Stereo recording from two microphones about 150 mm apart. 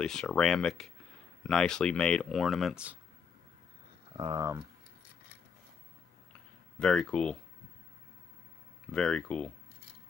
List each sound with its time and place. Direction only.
0.0 s speech: 5° left (ahead or behind)
4.1 s a sound: 35° right (ahead or behind)
6.8 s speech: 5° left (ahead or behind)
8.9 s speech: 5° left (ahead or behind)